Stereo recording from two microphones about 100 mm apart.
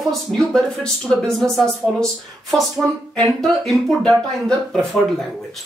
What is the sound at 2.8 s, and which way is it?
Speech, 20° right (ahead or behind).